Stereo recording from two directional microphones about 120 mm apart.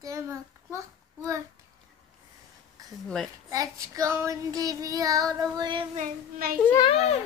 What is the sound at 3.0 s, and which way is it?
Speech, 5° left (ahead or behind).